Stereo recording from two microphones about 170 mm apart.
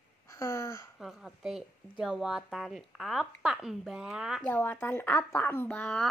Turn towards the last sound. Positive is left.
turn(degrees=5)  # may be behind; listen again after turning